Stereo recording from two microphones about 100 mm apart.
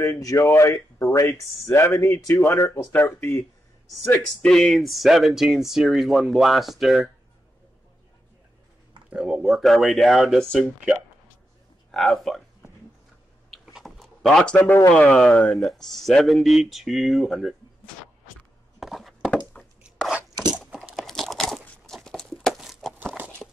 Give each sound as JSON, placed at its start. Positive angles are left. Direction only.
{"t": 0.0, "sound": "speech", "side_deg": 35}
{"t": 4.4, "sound": "speech", "side_deg": 5}
{"t": 9.1, "sound": "speech", "side_deg": -10}
{"t": 11.9, "sound": "speech", "side_deg": 0}
{"t": 13.5, "sound": "typing", "side_deg": 0}
{"t": 14.9, "sound": "speech", "side_deg": 10}
{"t": 18.8, "sound": "a sound", "side_deg": 0}
{"t": 20.5, "sound": "crunch", "side_deg": -10}
{"t": 23.4, "sound": "horse", "side_deg": 10}